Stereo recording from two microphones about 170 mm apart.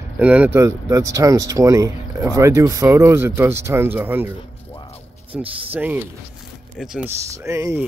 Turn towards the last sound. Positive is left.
turn(degrees=-15)  # may be behind; listen again after turning